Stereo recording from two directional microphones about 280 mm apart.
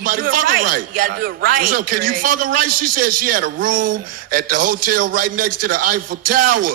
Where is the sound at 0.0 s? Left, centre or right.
Right.